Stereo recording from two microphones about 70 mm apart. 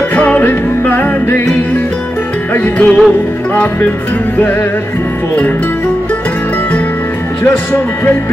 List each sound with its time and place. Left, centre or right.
0.1 s music: left
2.5 s music: left
7.4 s speech: left